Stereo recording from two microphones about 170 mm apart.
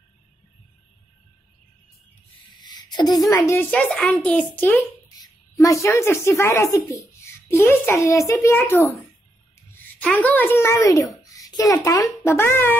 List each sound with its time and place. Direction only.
2.6 s a sound: 25° left (ahead or behind)
3.3 s a child's voice: 20° left (ahead or behind)
3.7 s a child's voice: 5° left (ahead or behind)
5.0 s a woman's voice: 20° left (ahead or behind)